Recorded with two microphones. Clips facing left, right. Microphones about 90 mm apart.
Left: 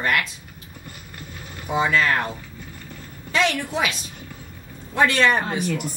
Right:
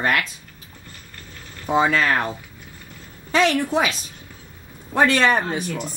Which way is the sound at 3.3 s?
40° right (ahead or behind).